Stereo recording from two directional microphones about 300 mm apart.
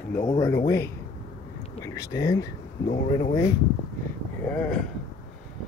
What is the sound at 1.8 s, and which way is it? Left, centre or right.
Speech, centre.